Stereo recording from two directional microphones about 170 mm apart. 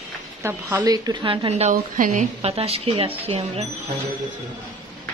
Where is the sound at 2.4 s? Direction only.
35° right (ahead or behind).